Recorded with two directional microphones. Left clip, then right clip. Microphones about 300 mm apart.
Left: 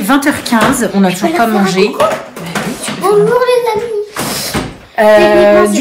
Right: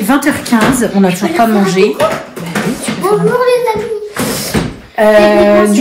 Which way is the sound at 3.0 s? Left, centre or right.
Centre.